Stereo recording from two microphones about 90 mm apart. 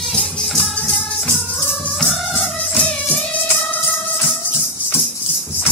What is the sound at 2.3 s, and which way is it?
Music, 20° left (ahead or behind).